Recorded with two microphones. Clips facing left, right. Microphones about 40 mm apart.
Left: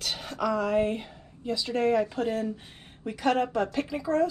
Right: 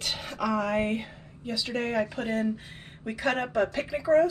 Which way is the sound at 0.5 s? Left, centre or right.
Right.